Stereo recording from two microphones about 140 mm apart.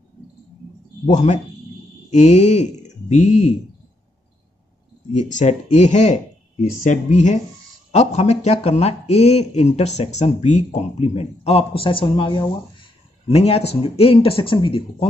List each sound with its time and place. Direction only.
1.0 s speech: 55° left (ahead or behind)
5.1 s speech: 55° left (ahead or behind)
6.6 s speech: 65° left (ahead or behind); by 15.0 s 40° left (ahead or behind)